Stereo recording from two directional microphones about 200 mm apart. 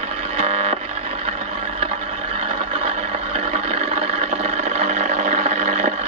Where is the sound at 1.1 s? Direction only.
30° right (ahead or behind).